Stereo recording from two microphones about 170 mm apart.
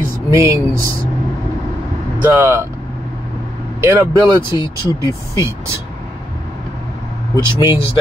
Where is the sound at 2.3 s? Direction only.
15° right (ahead or behind).